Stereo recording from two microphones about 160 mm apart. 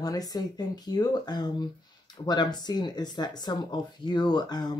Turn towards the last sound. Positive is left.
turn(degrees=25)  # may be behind; listen again after turning